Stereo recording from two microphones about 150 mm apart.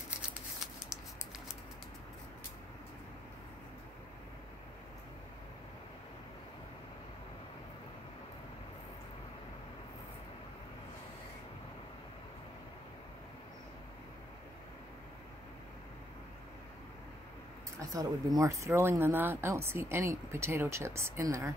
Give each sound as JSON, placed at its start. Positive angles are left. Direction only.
{"t": 17.7, "sound": "speech", "side_deg": -25}